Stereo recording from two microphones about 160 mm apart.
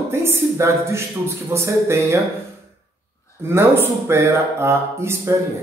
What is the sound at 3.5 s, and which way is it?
Speech, 15° right (ahead or behind).